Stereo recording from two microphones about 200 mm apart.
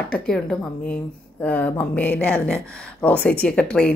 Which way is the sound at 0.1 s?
5° left (ahead or behind).